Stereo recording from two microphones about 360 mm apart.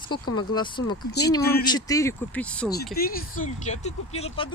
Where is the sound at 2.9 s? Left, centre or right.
Left.